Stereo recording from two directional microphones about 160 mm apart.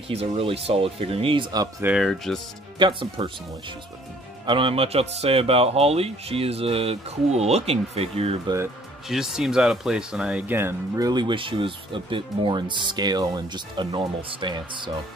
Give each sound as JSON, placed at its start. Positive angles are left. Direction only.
{"t": 0.1, "sound": "speech", "side_deg": -35}
{"t": 1.9, "sound": "speech", "side_deg": 0}
{"t": 2.8, "sound": "speech", "side_deg": -30}
{"t": 9.1, "sound": "speech", "side_deg": -5}